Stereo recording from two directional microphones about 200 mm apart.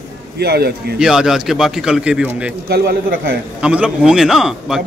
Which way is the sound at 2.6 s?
50° right (ahead or behind).